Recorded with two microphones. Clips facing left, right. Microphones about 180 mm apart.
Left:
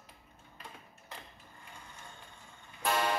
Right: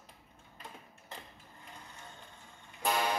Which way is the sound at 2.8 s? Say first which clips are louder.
Left 1 dB; 15° right (ahead or behind).